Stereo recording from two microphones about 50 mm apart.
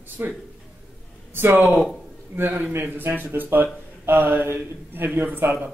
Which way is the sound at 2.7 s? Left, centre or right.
Right.